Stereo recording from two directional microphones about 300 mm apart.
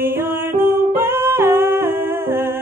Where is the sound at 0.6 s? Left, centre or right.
Centre.